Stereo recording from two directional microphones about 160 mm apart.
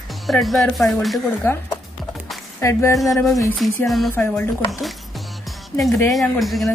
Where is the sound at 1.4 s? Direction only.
20° left (ahead or behind).